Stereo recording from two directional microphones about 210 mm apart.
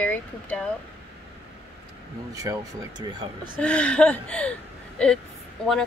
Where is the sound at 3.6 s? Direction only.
5° left (ahead or behind).